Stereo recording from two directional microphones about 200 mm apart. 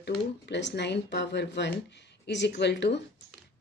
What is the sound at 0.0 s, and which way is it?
Speech, 60° left (ahead or behind).